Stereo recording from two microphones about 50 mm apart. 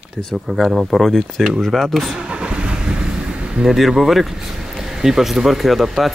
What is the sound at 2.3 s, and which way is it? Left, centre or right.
Vehicle, right.